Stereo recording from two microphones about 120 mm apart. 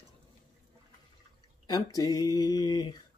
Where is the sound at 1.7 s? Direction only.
30° left (ahead or behind).